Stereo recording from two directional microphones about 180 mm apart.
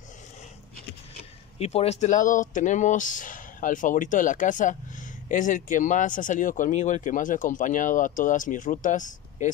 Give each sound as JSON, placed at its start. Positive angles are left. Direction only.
{"t": 1.6, "sound": "speech", "side_deg": 35}